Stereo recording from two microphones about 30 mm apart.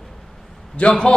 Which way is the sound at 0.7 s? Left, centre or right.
Left.